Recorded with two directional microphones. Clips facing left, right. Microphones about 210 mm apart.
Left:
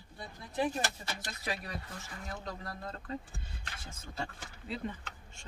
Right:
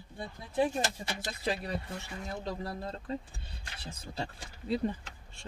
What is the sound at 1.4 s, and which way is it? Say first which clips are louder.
Speech: right 6 dB; 25° right (ahead or behind).